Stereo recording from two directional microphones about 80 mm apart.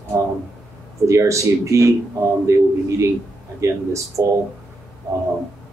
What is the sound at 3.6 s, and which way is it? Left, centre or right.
Speech, right.